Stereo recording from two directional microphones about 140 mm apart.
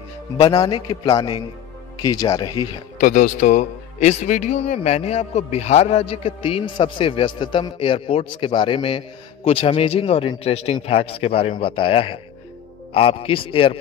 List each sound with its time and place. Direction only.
0.7 s a man's voice: 40° left (ahead or behind)
1.1 s speech: 25° left (ahead or behind)
3.0 s a man's voice: 65° left (ahead or behind); by 13.7 s 40° left (ahead or behind)